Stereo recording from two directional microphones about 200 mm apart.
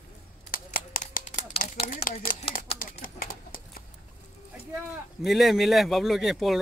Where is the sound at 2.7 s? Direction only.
45° left (ahead or behind).